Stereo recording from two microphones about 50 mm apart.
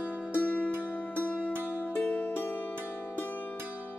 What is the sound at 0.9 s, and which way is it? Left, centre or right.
Music, left.